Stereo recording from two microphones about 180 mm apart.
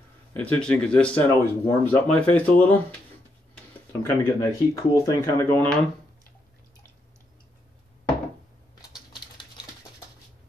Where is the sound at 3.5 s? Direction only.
15° left (ahead or behind).